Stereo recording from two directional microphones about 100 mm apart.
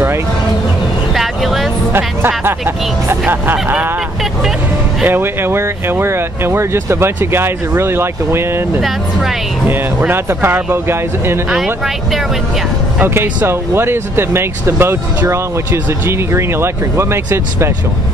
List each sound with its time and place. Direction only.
1.1 s vehicle: centre (ahead or behind)
1.9 s speech: 20° right (ahead or behind)
5.0 s speech: 20° right (ahead or behind)
11.5 s speech: 5° right (ahead or behind)
13.0 s speech: 20° right (ahead or behind)